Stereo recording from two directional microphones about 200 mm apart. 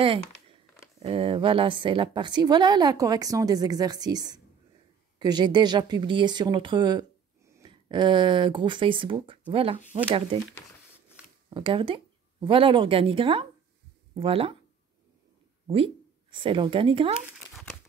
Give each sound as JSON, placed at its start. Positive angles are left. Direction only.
{"t": 0.9, "sound": "a woman's voice", "side_deg": -25}
{"t": 11.5, "sound": "a woman's voice", "side_deg": -25}
{"t": 15.6, "sound": "speech", "side_deg": -25}